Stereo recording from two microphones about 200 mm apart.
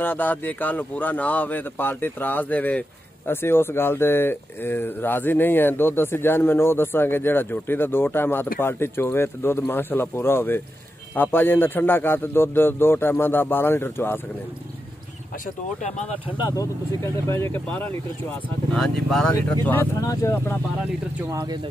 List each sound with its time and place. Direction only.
0.0 s speech: 10° left (ahead or behind)
16.3 s speech: 20° left (ahead or behind)
21.3 s speech: 20° right (ahead or behind)